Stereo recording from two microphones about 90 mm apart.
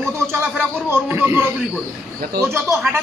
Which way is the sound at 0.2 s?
25° right (ahead or behind).